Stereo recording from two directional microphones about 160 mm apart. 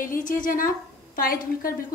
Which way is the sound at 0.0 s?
60° left (ahead or behind).